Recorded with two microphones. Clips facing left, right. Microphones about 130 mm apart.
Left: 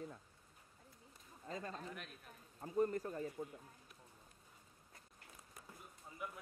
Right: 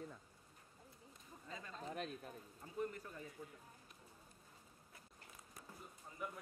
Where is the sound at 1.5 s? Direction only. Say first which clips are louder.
Left 7 dB; 45° left (ahead or behind).